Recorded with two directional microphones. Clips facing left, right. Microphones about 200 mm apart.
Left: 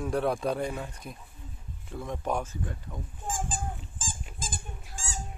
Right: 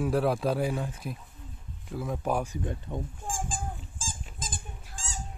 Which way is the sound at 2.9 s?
25° right (ahead or behind).